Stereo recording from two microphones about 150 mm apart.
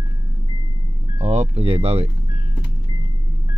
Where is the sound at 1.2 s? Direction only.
45° right (ahead or behind).